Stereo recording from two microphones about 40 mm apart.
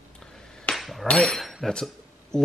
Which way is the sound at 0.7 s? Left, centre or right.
Centre.